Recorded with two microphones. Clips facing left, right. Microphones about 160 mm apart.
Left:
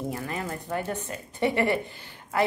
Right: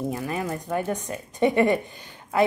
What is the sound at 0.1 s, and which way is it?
A woman's voice, 15° right (ahead or behind).